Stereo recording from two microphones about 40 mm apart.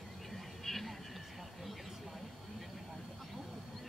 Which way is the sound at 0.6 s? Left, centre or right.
Centre.